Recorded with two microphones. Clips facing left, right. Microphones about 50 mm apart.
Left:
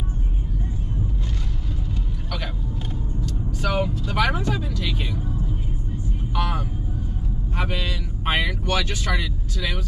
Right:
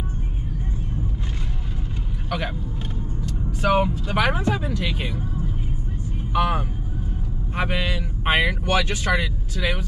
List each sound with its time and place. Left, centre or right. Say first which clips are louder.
3.3 s vehicle: right 6 dB; right
4.1 s speech: right 1 dB; right
6.3 s speech: right 5 dB; right